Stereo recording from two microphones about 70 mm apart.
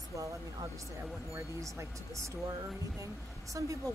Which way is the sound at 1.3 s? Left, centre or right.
Right.